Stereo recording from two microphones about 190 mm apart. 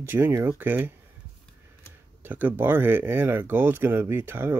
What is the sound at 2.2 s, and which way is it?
Speech, 10° right (ahead or behind).